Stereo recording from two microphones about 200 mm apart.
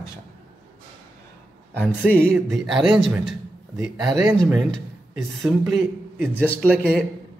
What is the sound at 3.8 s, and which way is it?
Speech, 15° right (ahead or behind).